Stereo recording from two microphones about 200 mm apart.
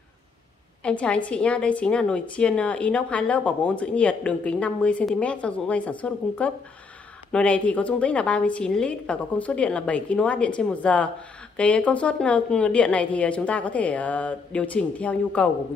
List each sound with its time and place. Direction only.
0.8 s a woman's voice: 5° left (ahead or behind)